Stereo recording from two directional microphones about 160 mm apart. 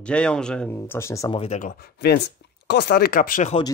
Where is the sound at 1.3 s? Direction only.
35° left (ahead or behind).